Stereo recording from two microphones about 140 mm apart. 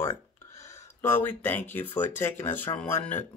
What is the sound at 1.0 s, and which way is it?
Speech, 15° left (ahead or behind).